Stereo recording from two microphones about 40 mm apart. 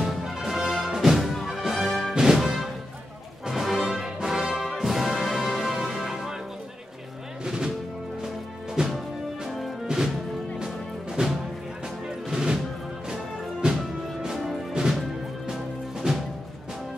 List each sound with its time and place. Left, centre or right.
0.0 s music: centre
7.4 s music: centre
8.8 s music: centre